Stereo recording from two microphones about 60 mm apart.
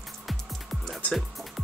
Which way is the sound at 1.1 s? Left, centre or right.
Centre.